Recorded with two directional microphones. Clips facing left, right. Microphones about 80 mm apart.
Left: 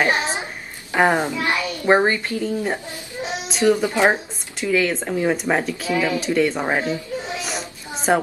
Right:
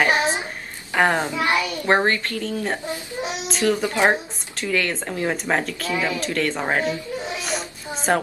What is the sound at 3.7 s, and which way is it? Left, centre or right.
Speech, centre.